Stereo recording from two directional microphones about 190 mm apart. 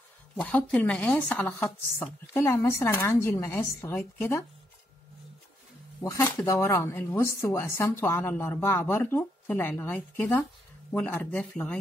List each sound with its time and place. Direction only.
0.4 s speech: 5° left (ahead or behind)
6.0 s speech: 10° left (ahead or behind)